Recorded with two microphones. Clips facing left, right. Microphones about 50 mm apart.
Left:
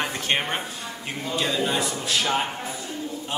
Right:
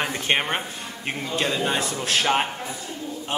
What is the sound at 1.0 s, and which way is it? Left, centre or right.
Speech, right.